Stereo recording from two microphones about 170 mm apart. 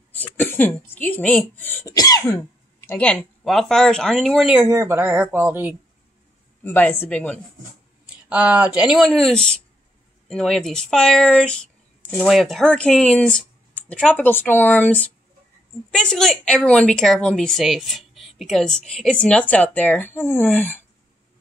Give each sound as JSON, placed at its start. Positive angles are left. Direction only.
{"t": 0.4, "sound": "speech", "side_deg": 10}
{"t": 2.0, "sound": "cough", "side_deg": 20}
{"t": 2.9, "sound": "a woman's voice", "side_deg": 10}
{"t": 4.6, "sound": "speech", "side_deg": -15}
{"t": 6.6, "sound": "speech", "side_deg": 10}
{"t": 8.1, "sound": "a woman's voice", "side_deg": -10}